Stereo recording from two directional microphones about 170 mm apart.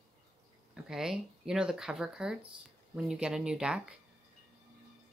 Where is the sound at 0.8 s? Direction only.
Centre (ahead or behind).